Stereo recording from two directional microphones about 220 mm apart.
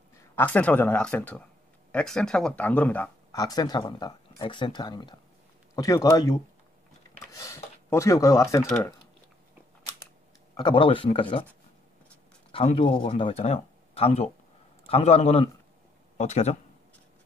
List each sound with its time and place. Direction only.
0.2 s speech: 10° left (ahead or behind)
3.3 s speech: 15° left (ahead or behind)
7.3 s speech: 15° left (ahead or behind)
10.5 s speech: 20° left (ahead or behind)
12.5 s speech: 25° left (ahead or behind)